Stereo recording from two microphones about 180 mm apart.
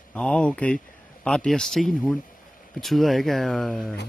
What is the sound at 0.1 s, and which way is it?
Speech, 5° left (ahead or behind).